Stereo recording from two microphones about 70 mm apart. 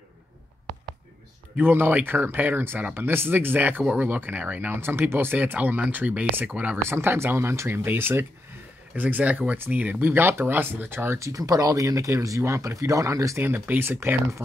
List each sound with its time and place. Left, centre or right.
1.6 s speech: right
6.8 s speech: right
13.4 s speech: right